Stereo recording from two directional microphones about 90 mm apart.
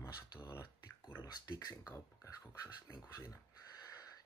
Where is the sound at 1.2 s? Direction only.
45° left (ahead or behind).